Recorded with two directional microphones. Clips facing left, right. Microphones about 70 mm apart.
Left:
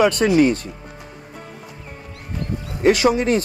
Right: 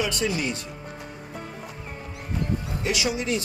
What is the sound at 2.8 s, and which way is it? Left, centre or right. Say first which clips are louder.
Speech: left 13 dB; left.